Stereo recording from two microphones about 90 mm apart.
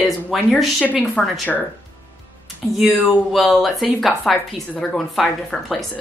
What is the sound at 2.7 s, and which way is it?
Speech, centre (ahead or behind).